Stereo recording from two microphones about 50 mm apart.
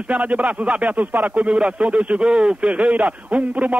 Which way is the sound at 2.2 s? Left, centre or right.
Centre.